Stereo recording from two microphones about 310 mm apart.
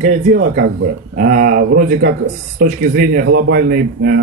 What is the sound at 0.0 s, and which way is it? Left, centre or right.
A man's voice, right.